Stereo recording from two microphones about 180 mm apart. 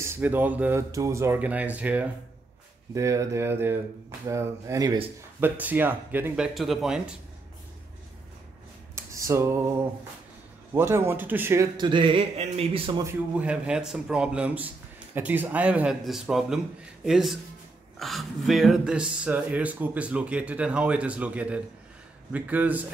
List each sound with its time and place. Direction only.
0.0 s a man's voice: 10° right (ahead or behind)
8.9 s a sound: 15° right (ahead or behind)
10.7 s a man's voice: 10° right (ahead or behind); by 13.0 s 30° right (ahead or behind)
13.0 s a man's voice: 5° right (ahead or behind)